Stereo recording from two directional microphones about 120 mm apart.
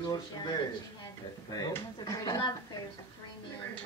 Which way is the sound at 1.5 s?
35° left (ahead or behind).